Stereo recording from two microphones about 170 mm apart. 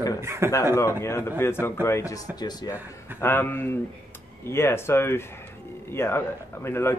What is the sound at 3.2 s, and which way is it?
Speech, 15° left (ahead or behind).